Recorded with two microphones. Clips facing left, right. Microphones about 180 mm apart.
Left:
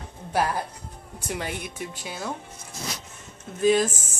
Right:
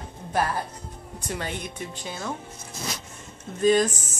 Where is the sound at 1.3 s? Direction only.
10° left (ahead or behind).